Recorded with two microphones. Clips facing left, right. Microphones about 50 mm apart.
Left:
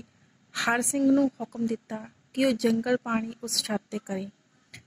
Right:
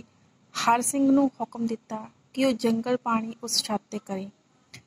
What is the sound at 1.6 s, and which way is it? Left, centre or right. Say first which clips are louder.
Speech: even; centre.